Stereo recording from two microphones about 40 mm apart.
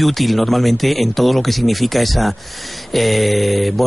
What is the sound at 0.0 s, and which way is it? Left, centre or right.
Speech, centre.